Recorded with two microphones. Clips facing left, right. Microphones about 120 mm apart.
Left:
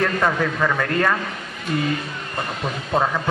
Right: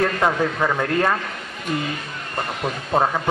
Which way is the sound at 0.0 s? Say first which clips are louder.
Right 1 dB; 20° right (ahead or behind).